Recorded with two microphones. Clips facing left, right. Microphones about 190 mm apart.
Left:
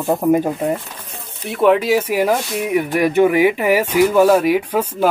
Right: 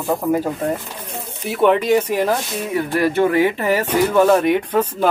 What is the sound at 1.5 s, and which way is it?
Speech, centre (ahead or behind).